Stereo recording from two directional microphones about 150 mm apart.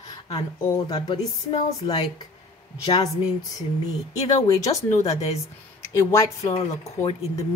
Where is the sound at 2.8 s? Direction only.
30° left (ahead or behind).